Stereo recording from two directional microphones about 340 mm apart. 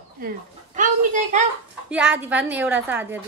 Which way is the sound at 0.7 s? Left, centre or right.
Right.